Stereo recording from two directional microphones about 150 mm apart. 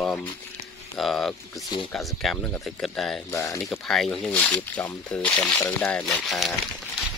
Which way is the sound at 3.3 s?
20° left (ahead or behind).